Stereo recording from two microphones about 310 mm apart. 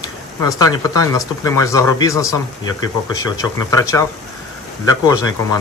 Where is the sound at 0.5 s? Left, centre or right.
Centre.